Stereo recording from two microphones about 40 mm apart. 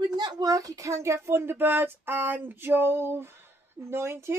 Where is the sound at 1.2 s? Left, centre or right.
Right.